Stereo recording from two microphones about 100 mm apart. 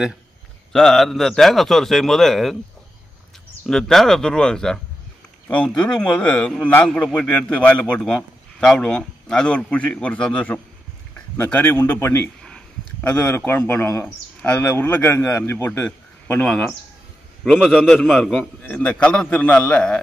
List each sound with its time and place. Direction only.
0.7 s speech: 5° left (ahead or behind)
3.6 s a man's voice: 5° left (ahead or behind); by 12.2 s 25° left (ahead or behind)
12.4 s a sound: 10° left (ahead or behind)
13.5 s a man's voice: 20° left (ahead or behind)
14.4 s a man's voice: 10° left (ahead or behind)
16.4 s speech: 5° left (ahead or behind)
17.6 s a man's voice: 10° right (ahead or behind)
18.0 s speech: 5° left (ahead or behind)
18.6 s a man's voice: 15° left (ahead or behind)